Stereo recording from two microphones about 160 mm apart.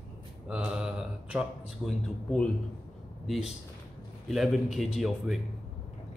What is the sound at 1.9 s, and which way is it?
A man's voice, 5° left (ahead or behind).